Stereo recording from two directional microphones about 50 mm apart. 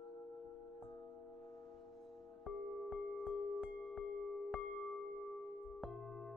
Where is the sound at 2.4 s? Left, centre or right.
Centre.